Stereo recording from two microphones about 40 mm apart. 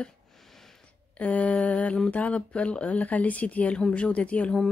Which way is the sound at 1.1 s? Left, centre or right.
Left.